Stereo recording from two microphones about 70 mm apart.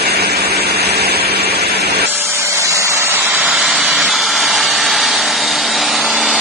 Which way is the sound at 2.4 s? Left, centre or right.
Right.